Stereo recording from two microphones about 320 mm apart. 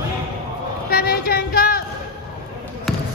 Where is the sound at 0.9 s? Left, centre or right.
Left.